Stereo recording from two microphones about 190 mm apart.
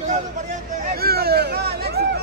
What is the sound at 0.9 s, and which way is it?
Hubbub, 55° right (ahead or behind).